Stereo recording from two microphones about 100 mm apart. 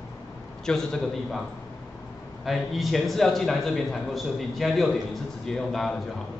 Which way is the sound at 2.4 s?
Centre (ahead or behind).